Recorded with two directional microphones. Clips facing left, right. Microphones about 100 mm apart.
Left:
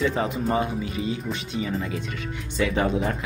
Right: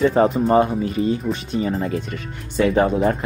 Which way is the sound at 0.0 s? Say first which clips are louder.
Right 8 dB; 45° right (ahead or behind).